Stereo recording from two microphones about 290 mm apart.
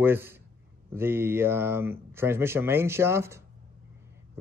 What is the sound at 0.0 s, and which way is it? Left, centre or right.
Speech, centre.